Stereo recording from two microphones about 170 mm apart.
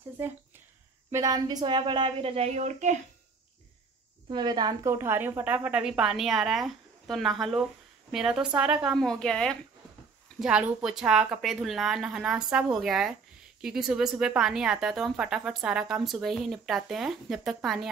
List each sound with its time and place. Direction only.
0.2 s a woman's voice: 10° right (ahead or behind); by 3.0 s 45° right (ahead or behind)
4.3 s speech: 25° right (ahead or behind); by 17.8 s centre (ahead or behind)